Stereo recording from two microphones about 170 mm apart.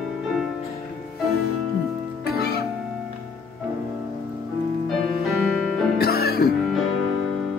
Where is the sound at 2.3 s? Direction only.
70° left (ahead or behind).